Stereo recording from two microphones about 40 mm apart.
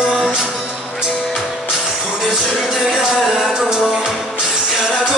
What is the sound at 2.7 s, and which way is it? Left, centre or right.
Music, centre.